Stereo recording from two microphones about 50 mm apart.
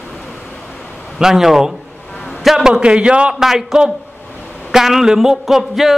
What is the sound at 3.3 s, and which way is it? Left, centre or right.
A man's voice, centre.